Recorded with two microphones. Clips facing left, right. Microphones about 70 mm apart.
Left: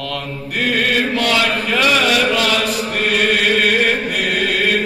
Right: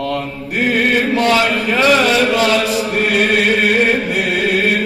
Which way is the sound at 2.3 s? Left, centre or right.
Right.